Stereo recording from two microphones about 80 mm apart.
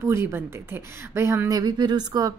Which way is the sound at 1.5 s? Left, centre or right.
Right.